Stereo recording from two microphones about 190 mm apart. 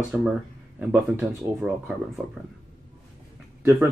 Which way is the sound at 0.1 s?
5° right (ahead or behind).